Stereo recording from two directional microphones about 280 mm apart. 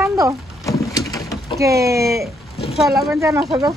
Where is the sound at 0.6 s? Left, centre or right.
Centre.